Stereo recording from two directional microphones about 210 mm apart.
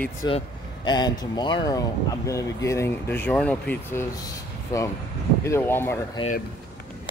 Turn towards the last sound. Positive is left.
turn(degrees=10)  # may be behind; listen again after turning